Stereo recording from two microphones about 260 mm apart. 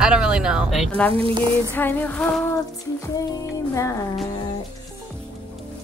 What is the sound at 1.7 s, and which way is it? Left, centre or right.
Speech, centre.